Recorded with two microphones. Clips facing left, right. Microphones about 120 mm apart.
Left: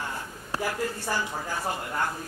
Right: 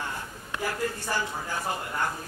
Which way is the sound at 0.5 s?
35° left (ahead or behind).